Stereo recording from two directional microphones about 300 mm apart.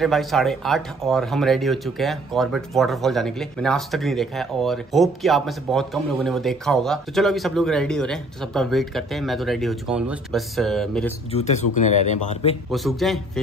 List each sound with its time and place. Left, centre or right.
0.0 s speech: centre
11.3 s speech: left
12.7 s speech: centre